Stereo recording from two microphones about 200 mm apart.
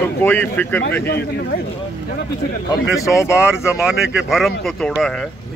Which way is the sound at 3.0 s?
15° left (ahead or behind).